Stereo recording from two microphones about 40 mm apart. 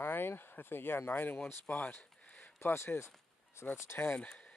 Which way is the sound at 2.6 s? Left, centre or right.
Left.